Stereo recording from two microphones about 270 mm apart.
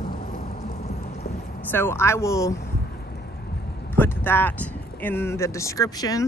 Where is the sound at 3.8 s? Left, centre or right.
Centre.